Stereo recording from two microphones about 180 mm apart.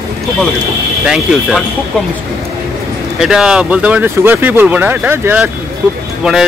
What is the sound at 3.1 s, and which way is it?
Speech, 5° right (ahead or behind).